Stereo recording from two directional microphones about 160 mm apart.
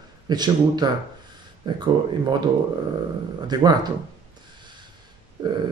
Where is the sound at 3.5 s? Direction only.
25° right (ahead or behind).